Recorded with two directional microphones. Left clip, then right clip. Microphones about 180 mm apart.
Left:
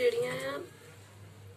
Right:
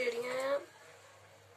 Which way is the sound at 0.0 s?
60° right (ahead or behind).